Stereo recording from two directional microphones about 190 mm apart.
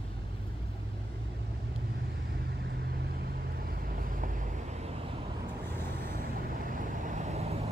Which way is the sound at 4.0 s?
45° right (ahead or behind).